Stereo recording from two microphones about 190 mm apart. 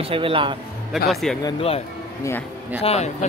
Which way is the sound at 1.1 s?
Centre (ahead or behind).